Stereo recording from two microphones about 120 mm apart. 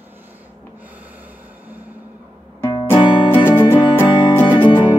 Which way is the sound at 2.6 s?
20° left (ahead or behind).